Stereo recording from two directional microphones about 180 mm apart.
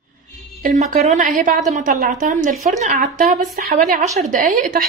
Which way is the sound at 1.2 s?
50° right (ahead or behind).